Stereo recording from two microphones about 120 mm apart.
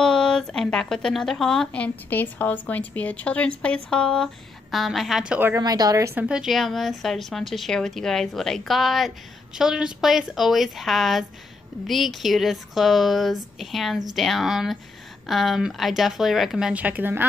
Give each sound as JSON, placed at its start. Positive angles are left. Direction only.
{"t": 0.0, "sound": "speech", "side_deg": 5}
{"t": 5.6, "sound": "a woman's voice", "side_deg": -30}
{"t": 6.1, "sound": "speech", "side_deg": -5}